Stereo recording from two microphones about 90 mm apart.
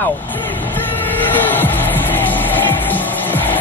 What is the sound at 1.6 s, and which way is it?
Music, 20° left (ahead or behind).